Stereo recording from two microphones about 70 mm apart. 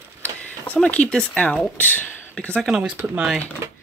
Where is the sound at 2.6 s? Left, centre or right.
Centre.